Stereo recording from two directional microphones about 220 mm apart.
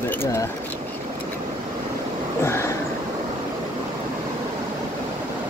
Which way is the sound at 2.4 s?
10° left (ahead or behind).